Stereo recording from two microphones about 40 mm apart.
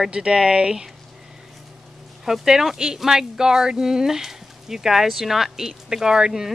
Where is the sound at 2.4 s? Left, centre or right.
Centre.